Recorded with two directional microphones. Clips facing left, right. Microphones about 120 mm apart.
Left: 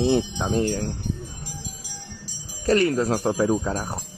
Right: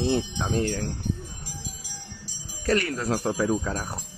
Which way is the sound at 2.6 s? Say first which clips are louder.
Left 5 dB; 30° left (ahead or behind).